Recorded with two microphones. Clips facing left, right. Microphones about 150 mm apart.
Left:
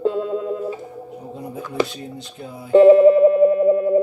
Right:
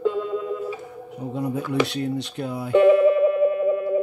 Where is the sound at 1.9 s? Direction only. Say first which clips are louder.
Right 8 dB; 75° right (ahead or behind).